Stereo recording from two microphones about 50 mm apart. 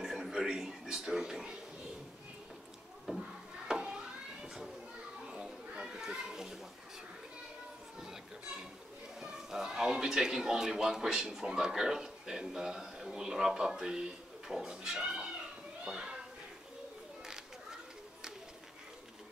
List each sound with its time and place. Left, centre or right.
0.0 s television: centre
3.1 s a sound: centre
5.2 s children playing: centre
9.2 s speech: centre
15.8 s children playing: centre